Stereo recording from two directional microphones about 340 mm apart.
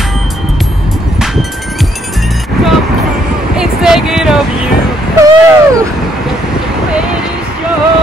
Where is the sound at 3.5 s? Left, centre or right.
Centre.